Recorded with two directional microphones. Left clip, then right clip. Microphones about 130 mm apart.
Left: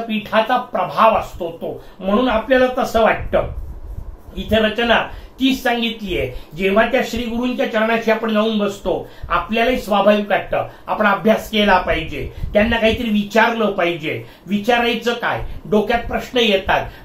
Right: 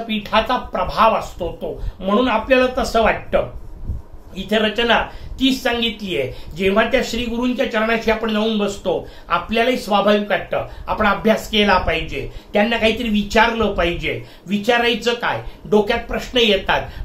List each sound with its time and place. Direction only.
0.3 s speech: 20° right (ahead or behind)
4.5 s speech: 20° right (ahead or behind)